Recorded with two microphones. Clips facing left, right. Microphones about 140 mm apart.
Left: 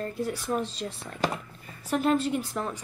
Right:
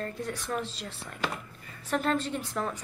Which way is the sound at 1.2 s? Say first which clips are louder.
Left 5 dB; 40° left (ahead or behind).